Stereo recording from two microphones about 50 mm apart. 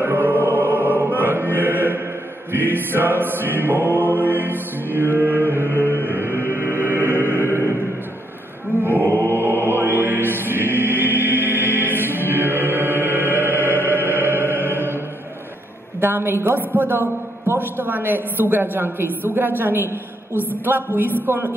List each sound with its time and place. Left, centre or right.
0.0 s music: right
2.5 s a woman's voice: right
5.7 s a sound: right
6.0 s music: right
8.8 s choir: right
11.2 s music: right
16.0 s a woman's voice: right